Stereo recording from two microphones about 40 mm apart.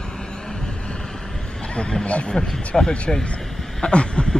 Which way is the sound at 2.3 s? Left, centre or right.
Centre.